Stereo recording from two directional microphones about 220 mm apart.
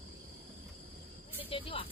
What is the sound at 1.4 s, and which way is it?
Speech, 25° left (ahead or behind).